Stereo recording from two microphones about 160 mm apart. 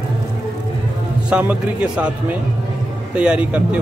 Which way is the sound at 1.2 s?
5° right (ahead or behind).